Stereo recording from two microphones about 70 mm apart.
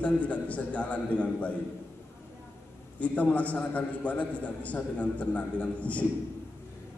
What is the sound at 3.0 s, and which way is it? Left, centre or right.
A man's voice, left.